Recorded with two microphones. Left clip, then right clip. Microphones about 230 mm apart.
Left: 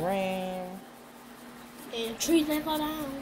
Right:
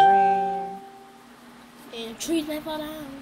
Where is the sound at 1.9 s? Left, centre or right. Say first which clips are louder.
Left 1 dB; right.